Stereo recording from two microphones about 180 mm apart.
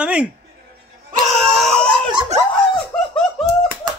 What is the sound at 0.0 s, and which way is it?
Chuckle, 5° right (ahead or behind).